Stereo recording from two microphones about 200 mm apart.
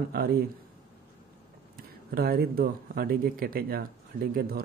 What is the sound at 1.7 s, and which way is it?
Speech, 50° right (ahead or behind).